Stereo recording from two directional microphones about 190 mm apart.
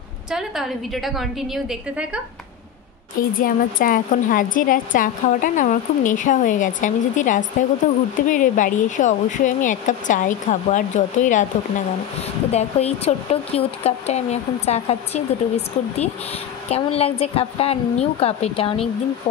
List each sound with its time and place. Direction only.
0.3 s a woman's voice: centre (ahead or behind)
3.3 s speech: 45° left (ahead or behind)
12.4 s speech: 35° left (ahead or behind)